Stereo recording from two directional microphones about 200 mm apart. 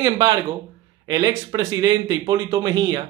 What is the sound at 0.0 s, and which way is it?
Speech, 20° right (ahead or behind).